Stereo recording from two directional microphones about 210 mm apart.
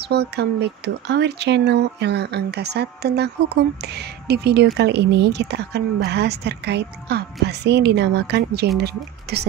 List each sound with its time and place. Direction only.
0.1 s a woman's voice: 50° right (ahead or behind)